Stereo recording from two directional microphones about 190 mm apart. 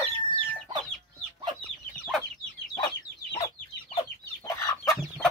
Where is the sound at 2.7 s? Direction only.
20° left (ahead or behind).